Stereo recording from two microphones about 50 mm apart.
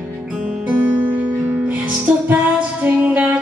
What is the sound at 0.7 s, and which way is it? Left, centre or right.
Music, right.